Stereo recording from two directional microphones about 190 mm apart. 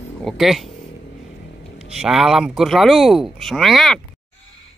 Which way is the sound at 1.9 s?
5° right (ahead or behind).